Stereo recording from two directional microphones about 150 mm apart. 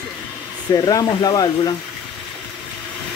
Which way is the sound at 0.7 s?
25° left (ahead or behind).